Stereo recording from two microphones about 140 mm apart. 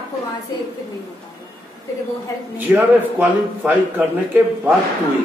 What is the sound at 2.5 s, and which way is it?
A man's voice, 15° right (ahead or behind).